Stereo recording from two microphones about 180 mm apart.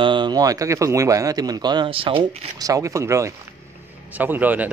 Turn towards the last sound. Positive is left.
turn(degrees=-10)  # may be behind; listen again after turning